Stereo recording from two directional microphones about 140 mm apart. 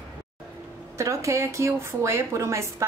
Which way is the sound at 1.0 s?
20° right (ahead or behind).